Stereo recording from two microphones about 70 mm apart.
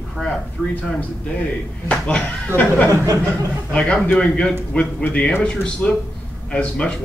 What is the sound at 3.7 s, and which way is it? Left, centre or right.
Speech, centre.